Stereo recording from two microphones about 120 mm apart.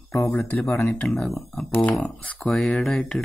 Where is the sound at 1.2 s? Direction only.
Centre (ahead or behind).